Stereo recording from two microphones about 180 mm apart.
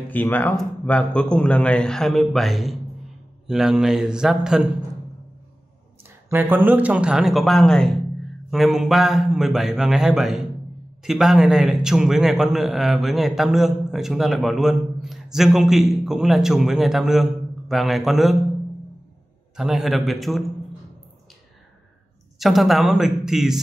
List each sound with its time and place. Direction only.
0.1 s a man's voice: 10° left (ahead or behind)
6.3 s a man's voice: 10° right (ahead or behind)
19.5 s a man's voice: centre (ahead or behind)
22.4 s a man's voice: centre (ahead or behind)